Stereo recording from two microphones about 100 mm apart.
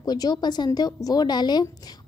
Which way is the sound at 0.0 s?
40° left (ahead or behind).